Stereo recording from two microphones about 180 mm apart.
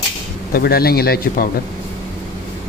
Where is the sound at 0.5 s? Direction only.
60° left (ahead or behind).